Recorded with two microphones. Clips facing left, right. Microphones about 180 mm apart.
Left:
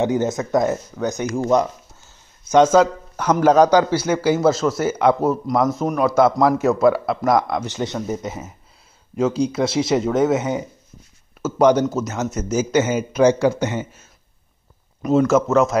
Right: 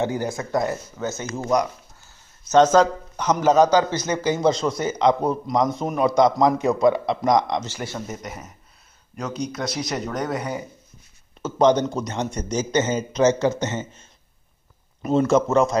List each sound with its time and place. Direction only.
0.0 s a man's voice: 20° left (ahead or behind)
2.5 s a man's voice: 10° left (ahead or behind)
7.6 s speech: 20° left (ahead or behind)
11.4 s a man's voice: 5° left (ahead or behind)
15.0 s a man's voice: centre (ahead or behind)